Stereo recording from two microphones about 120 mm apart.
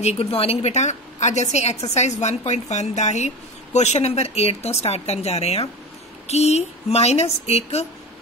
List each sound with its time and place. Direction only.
0.0 s a woman's voice: 60° left (ahead or behind)